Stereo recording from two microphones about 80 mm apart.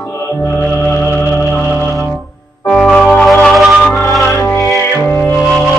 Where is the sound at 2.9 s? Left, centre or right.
Centre.